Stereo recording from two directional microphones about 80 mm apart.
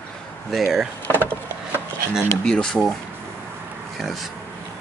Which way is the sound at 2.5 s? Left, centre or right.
Centre.